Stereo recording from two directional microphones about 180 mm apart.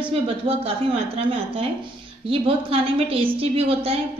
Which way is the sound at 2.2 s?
30° right (ahead or behind).